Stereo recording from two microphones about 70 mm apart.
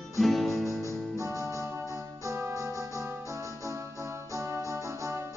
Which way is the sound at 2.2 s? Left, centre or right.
Right.